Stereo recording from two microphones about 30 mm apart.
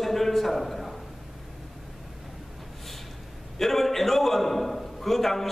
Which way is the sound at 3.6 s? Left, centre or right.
Centre.